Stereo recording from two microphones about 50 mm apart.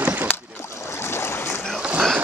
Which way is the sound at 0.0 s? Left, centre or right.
Right.